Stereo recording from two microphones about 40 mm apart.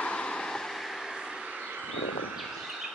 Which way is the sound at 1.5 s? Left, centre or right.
Right.